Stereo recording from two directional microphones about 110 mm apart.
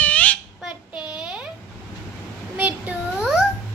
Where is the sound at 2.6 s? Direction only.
15° right (ahead or behind).